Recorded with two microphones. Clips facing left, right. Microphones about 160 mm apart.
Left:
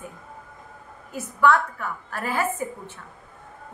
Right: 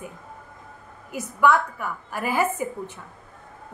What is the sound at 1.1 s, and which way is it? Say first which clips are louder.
A woman's voice: even; 10° right (ahead or behind).